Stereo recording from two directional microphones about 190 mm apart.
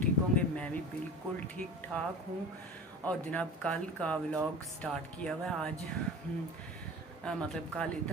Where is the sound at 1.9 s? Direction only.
5° left (ahead or behind).